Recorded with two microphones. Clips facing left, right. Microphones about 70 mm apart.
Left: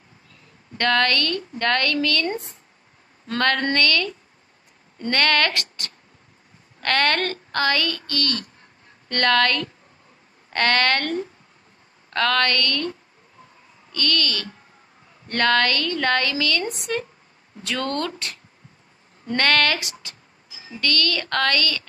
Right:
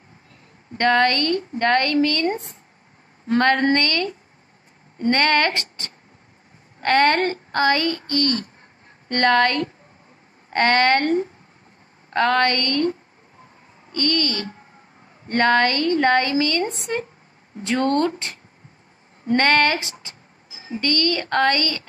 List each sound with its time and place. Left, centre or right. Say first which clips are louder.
0.7 s a woman's voice: right 3 dB; centre